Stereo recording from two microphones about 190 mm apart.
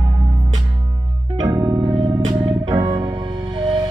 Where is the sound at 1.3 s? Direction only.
20° right (ahead or behind).